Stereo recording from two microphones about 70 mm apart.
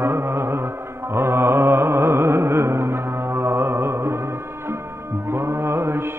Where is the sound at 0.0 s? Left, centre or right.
Right.